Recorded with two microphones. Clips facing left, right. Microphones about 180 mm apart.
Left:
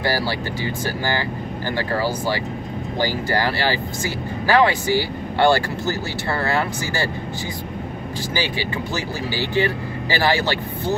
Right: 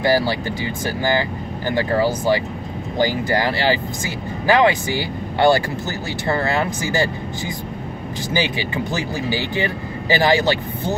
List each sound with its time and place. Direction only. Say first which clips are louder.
0.0 s speech: right 5 dB; 15° right (ahead or behind)
1.7 s speech: right 4 dB; 15° right (ahead or behind)
8.3 s speech: right 3 dB; 20° right (ahead or behind)